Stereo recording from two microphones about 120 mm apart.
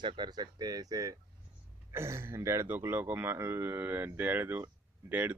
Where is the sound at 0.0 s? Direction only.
40° right (ahead or behind).